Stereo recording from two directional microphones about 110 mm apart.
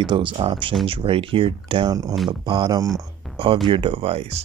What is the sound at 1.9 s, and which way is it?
Speech, 35° right (ahead or behind).